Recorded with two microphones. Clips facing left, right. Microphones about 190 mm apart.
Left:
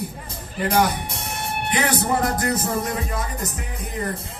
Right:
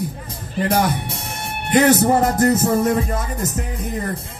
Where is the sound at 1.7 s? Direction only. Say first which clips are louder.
Right 9 dB; 45° right (ahead or behind).